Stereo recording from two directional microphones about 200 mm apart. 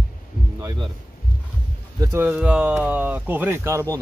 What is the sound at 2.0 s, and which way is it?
Speech, 15° right (ahead or behind).